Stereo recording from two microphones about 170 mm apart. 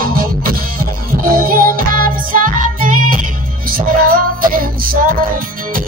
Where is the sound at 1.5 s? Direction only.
55° right (ahead or behind).